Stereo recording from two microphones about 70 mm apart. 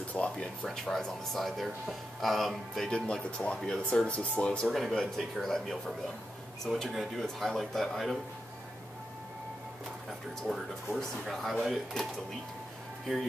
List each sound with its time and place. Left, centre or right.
0.2 s speech: centre
0.7 s speech: centre
2.9 s speech: centre
4.6 s speech: centre
11.0 s speech: centre